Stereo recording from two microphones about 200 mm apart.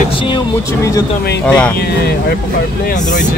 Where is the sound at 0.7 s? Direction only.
15° left (ahead or behind).